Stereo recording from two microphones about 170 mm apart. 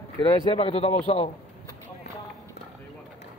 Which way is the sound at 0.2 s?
25° left (ahead or behind).